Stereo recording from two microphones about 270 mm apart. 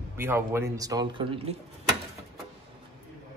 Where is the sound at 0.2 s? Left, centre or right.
Centre.